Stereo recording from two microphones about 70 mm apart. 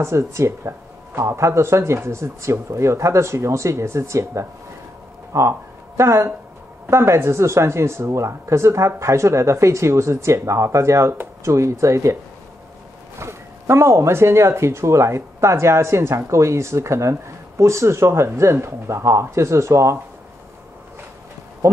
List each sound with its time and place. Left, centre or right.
0.0 s speech: right
13.2 s speech: right